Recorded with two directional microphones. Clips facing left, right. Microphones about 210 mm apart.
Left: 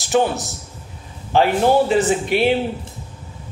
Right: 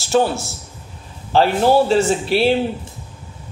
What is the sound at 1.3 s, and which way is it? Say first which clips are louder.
Speech: right 1 dB; 15° left (ahead or behind).